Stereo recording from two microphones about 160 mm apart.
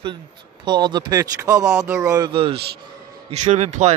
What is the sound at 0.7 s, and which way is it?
Speech, 30° right (ahead or behind).